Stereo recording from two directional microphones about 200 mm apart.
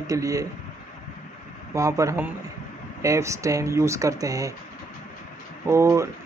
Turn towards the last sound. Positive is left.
turn(degrees=-15)  # may be behind; listen again after turning